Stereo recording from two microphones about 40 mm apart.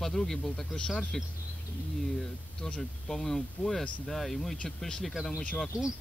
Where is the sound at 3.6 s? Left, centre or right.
Left.